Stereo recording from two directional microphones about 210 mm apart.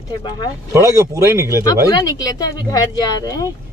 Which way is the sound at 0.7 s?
15° right (ahead or behind).